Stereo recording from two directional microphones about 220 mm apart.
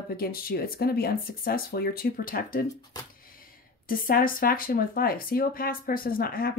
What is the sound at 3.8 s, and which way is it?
Speech, 40° left (ahead or behind).